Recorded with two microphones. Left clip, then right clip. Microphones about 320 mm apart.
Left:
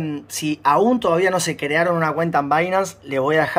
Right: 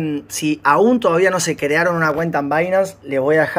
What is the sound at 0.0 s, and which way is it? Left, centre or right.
Speech, centre.